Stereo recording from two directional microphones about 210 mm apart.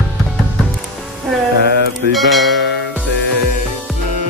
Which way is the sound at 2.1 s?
Centre (ahead or behind).